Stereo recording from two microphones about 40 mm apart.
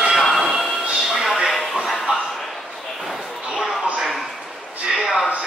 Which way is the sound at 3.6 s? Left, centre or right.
Centre.